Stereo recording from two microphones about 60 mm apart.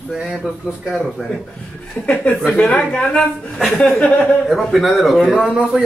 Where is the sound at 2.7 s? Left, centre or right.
Centre.